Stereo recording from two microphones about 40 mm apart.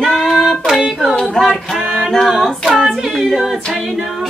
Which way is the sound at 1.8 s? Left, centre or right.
Right.